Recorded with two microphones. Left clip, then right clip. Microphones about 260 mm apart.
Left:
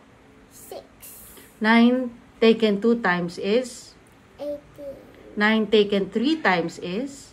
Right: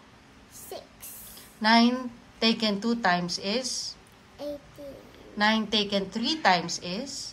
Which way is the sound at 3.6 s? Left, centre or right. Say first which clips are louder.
Right 4 dB; centre.